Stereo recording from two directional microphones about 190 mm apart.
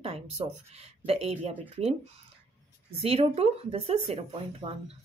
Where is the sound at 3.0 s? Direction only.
30° right (ahead or behind).